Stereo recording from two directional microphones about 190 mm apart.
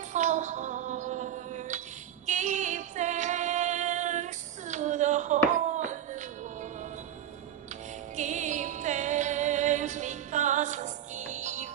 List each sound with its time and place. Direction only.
0.1 s music: 40° right (ahead or behind)
5.8 s a sound: 40° right (ahead or behind)
8.2 s music: 40° right (ahead or behind)